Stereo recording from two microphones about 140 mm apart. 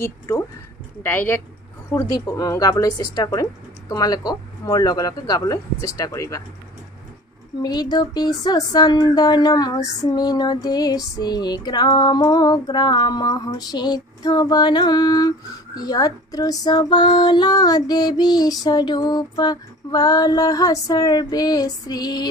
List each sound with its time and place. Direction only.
1.0 s speech: 15° left (ahead or behind)
7.6 s speech: 30° left (ahead or behind)